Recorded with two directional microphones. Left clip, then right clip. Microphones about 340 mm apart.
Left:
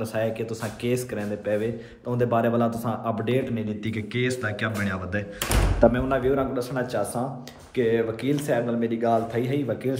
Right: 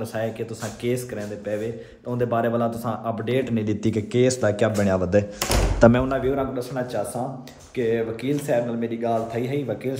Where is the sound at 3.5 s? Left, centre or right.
Right.